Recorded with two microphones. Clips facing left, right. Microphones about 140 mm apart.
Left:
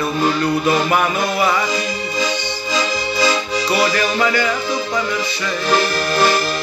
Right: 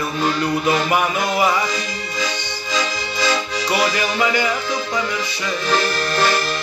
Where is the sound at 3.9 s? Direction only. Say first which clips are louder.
Left 2 dB; 15° right (ahead or behind).